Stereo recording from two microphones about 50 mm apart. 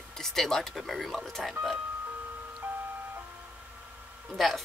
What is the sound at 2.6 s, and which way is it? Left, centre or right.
Ice cream truck, right.